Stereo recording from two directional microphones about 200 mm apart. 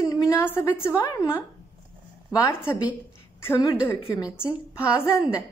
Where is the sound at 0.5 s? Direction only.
10° left (ahead or behind).